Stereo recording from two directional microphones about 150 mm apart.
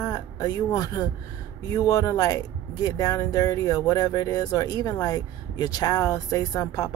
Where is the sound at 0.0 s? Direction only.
25° left (ahead or behind).